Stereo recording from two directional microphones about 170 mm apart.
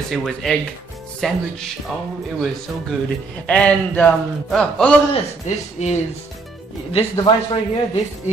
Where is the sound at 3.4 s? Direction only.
5° left (ahead or behind).